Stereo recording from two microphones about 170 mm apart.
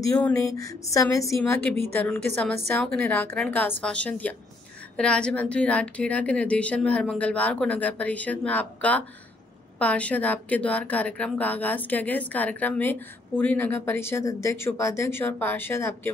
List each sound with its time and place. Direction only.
0.0 s a woman's voice: 15° left (ahead or behind)